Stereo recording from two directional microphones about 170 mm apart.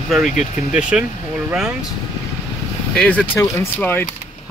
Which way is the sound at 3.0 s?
5° left (ahead or behind).